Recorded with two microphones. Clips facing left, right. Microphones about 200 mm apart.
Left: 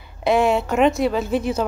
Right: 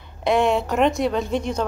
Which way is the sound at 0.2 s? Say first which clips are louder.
Left 1 dB; centre (ahead or behind).